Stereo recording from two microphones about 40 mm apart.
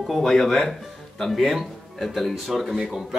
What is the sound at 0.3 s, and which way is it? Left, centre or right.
Speech, centre.